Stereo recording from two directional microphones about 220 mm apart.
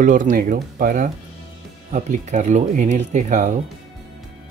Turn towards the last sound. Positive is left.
turn(degrees=-35)  # may be behind; listen again after turning